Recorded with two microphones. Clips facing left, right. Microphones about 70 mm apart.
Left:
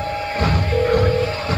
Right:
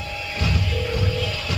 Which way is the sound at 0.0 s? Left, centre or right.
Left.